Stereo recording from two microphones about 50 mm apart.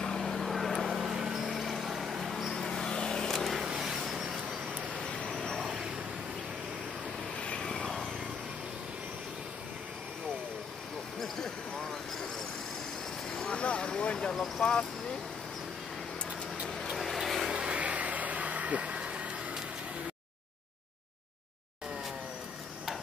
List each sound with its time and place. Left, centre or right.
0.0 s vehicle: centre
0.3 s vehicle: centre
2.5 s vehicle: centre
3.6 s vehicle: centre
5.6 s vehicle: centre
7.3 s vehicle: left
11.1 s basketball bounce: centre
13.3 s vehicle: centre
14.6 s speech: centre
16.8 s vehicle: centre
17.5 s vehicle: centre
17.7 s a sound: right